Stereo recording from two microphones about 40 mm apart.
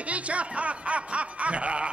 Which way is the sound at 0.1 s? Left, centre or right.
Right.